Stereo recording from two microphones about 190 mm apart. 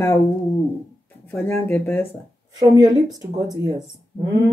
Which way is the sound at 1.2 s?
10° left (ahead or behind).